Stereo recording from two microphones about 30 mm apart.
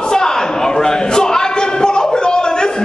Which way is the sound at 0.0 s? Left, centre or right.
Left.